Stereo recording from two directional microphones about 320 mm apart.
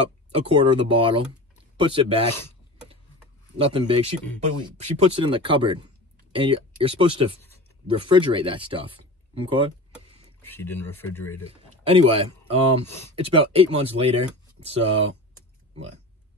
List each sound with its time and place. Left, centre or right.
0.3 s speech: centre
3.5 s speech: centre
9.9 s speech: centre
11.4 s speech: centre
12.8 s speech: centre
13.1 s speech: centre